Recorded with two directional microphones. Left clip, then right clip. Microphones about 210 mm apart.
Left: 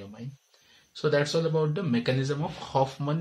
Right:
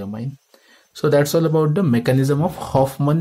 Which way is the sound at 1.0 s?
45° right (ahead or behind).